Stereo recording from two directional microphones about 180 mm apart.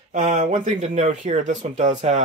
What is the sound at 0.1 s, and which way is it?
Speech, 45° right (ahead or behind).